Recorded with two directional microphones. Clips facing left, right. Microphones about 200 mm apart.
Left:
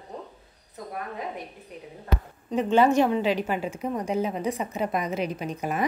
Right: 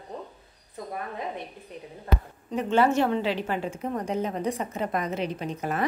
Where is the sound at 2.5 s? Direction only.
15° left (ahead or behind).